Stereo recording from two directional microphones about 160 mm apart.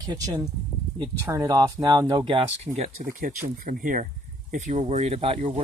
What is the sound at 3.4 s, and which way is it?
Speech, 55° right (ahead or behind).